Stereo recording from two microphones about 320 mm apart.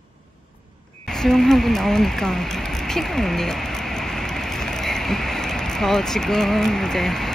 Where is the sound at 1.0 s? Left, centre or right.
Centre.